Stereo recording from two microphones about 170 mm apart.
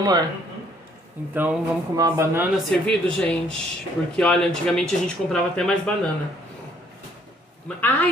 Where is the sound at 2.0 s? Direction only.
15° right (ahead or behind).